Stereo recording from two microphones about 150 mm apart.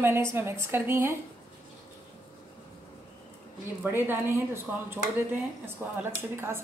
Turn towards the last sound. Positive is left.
turn(degrees=-15)  # may be behind; listen again after turning